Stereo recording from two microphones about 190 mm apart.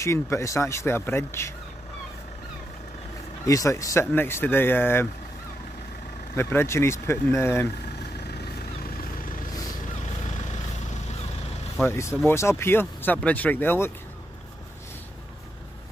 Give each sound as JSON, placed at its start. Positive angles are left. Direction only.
{"t": 0.0, "sound": "speech", "side_deg": 15}
{"t": 3.4, "sound": "speech", "side_deg": 15}
{"t": 6.3, "sound": "speech", "side_deg": 15}
{"t": 8.2, "sound": "vehicle", "side_deg": 55}
{"t": 11.8, "sound": "speech", "side_deg": 15}